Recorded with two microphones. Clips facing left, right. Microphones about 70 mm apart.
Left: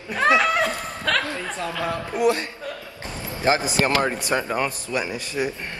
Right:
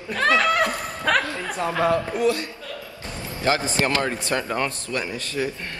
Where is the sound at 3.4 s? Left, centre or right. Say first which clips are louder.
Left 1 dB; left.